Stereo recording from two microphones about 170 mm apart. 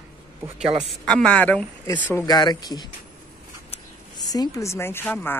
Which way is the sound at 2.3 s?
25° left (ahead or behind).